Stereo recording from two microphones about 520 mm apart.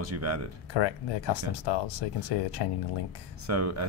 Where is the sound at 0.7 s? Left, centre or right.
Left.